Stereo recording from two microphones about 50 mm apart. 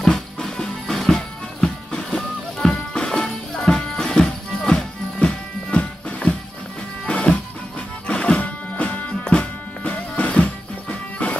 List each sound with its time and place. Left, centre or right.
0.0 s music: centre
8.4 s music: left